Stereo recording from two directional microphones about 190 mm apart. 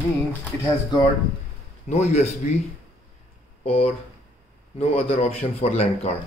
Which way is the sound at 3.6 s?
30° left (ahead or behind).